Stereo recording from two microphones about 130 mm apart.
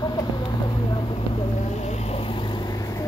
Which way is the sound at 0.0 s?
30° left (ahead or behind).